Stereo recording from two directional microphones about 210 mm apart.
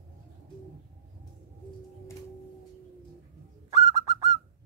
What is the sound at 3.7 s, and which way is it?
Bird, 15° right (ahead or behind).